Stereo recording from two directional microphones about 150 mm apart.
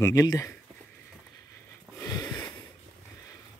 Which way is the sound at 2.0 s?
25° left (ahead or behind).